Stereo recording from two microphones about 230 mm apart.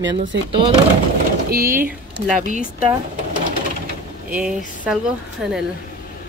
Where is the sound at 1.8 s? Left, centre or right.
Right.